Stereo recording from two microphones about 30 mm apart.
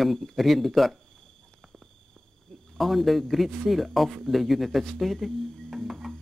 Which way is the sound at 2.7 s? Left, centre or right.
Centre.